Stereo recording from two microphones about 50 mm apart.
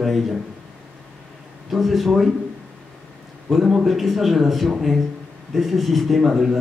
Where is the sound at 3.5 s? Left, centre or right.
Centre.